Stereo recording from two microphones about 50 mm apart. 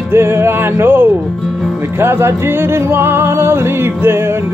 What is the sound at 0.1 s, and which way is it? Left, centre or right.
Music, right.